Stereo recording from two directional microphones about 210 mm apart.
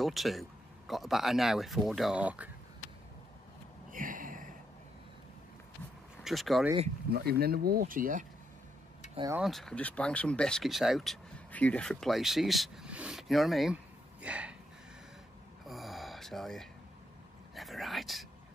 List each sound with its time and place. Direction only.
0.0 s speech: centre (ahead or behind)
3.9 s a sound: 40° right (ahead or behind)
6.2 s speech: centre (ahead or behind)
7.1 s speech: 50° right (ahead or behind)
9.3 s speech: centre (ahead or behind)
14.2 s gasp: 5° right (ahead or behind)
15.6 s gasp: centre (ahead or behind)
17.6 s a sound: centre (ahead or behind)